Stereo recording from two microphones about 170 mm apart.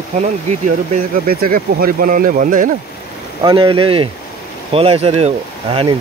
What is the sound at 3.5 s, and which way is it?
Speech, 30° right (ahead or behind).